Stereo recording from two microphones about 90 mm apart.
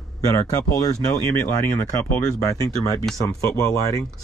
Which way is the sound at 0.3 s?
40° left (ahead or behind).